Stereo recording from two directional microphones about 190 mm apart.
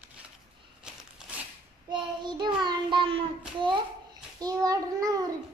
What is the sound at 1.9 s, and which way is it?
A child's voice, 25° right (ahead or behind).